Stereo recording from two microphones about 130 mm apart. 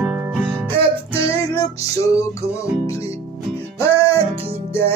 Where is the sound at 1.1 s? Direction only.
20° left (ahead or behind).